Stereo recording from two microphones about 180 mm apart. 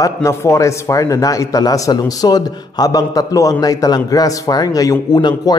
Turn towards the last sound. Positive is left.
turn(degrees=25)  # may be behind; listen again after turning